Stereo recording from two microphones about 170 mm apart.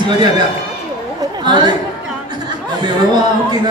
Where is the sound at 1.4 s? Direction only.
25° right (ahead or behind).